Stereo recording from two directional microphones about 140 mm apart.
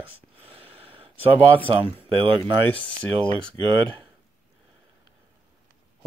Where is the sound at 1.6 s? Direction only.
40° right (ahead or behind).